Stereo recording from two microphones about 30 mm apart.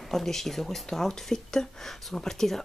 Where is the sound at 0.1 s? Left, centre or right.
Centre.